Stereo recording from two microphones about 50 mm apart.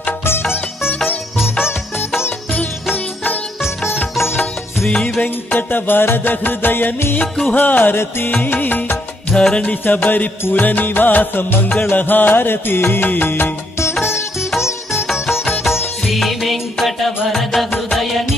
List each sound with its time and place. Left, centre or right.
0.2 s music: left
4.4 s music: centre
5.2 s music: left
9.3 s music: centre
9.8 s music: left
16.2 s music: centre